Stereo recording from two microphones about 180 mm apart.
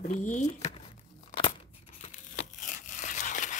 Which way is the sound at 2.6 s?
45° left (ahead or behind).